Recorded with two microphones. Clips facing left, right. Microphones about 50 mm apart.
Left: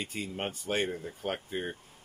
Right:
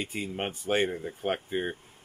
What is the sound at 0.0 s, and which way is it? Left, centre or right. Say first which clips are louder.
Speech: right 3 dB; centre.